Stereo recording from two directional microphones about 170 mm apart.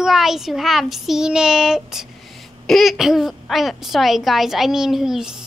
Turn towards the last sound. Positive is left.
turn(degrees=-5)  # may be behind; listen again after turning